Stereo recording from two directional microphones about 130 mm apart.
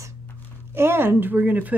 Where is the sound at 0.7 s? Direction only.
20° right (ahead or behind).